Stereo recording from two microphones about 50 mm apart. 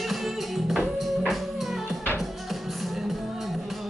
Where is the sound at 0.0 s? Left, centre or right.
Centre.